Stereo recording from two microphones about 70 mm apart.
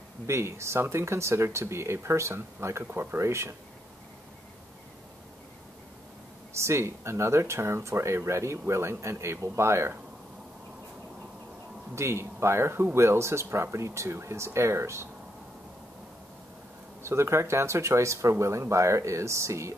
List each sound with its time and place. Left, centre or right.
0.3 s speech: right
6.5 s speech: right
11.9 s speech: right
17.0 s speech: right